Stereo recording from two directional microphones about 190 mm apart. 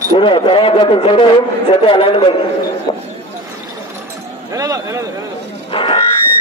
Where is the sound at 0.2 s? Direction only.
25° left (ahead or behind).